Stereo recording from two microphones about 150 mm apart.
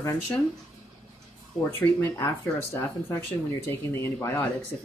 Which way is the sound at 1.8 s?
15° left (ahead or behind).